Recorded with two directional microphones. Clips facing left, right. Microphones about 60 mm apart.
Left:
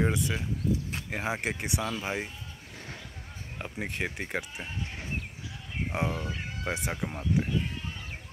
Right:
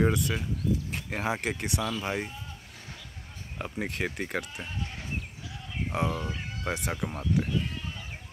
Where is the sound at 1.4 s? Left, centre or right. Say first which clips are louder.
Right 1 dB; centre.